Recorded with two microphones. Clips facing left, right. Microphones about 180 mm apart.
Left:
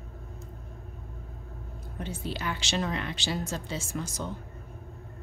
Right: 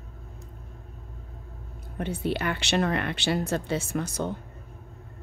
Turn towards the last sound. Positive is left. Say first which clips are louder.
# right 5 dB
turn(degrees=-60)  # may be behind; listen again after turning